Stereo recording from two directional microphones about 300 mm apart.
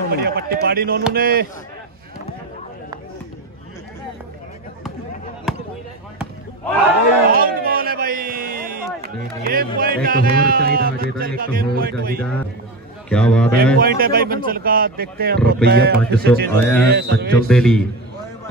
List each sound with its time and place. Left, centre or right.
0.1 s speech: right
5.5 s basketball bounce: centre
7.2 s a sound: right
9.4 s speech: right
13.1 s a man's voice: centre
13.7 s speech: right
16.4 s a man's voice: centre
16.8 s speech: right
17.5 s a man's voice: centre